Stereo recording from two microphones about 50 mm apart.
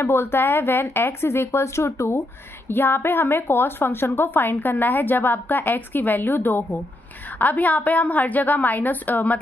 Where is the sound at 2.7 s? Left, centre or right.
Left.